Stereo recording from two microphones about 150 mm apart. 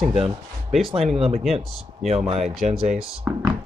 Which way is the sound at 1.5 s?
45° right (ahead or behind).